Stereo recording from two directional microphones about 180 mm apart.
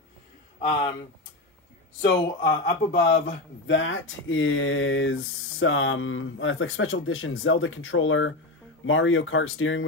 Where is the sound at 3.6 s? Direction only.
90° left.